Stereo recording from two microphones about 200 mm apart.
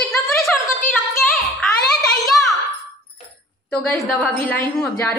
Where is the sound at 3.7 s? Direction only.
5° left (ahead or behind).